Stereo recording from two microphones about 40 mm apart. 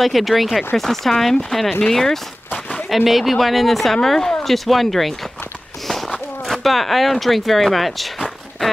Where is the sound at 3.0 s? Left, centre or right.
Centre.